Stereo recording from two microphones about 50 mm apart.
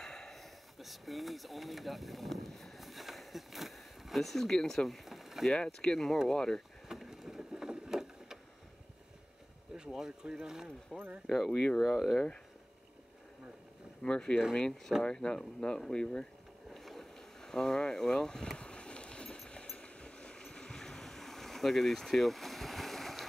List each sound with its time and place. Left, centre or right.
0.0 s a sound: centre
5.5 s speech: centre
6.9 s vehicle: centre
9.9 s speech: centre
10.9 s speech: centre
11.2 s speech: centre
11.5 s speech: centre
11.8 s speech: centre
14.0 s speech: centre
16.7 s vehicle: centre